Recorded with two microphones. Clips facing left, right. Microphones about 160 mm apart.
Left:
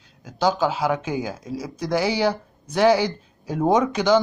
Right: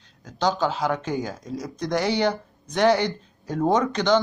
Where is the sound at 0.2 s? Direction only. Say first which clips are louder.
Left 2 dB; 5° left (ahead or behind).